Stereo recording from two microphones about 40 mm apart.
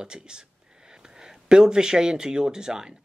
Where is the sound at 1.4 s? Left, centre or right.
Centre.